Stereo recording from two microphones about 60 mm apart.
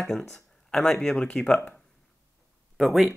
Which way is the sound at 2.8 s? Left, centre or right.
Centre.